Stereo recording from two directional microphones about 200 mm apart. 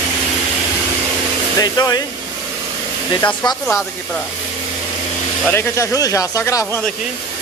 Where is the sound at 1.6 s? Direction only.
20° left (ahead or behind).